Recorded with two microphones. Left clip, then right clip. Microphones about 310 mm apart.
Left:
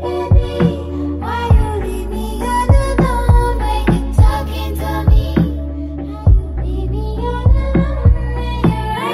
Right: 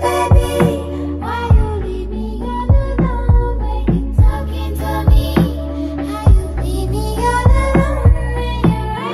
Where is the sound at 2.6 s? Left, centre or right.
Left.